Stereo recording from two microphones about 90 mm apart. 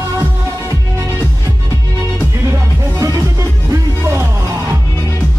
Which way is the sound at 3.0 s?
40° right (ahead or behind).